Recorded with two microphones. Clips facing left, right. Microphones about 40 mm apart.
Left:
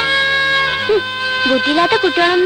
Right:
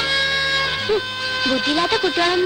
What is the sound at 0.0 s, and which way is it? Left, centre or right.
Speech, left.